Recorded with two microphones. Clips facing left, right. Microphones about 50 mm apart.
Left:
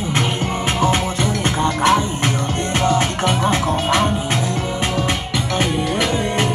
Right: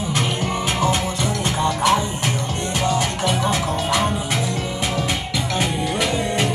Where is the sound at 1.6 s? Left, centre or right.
Left.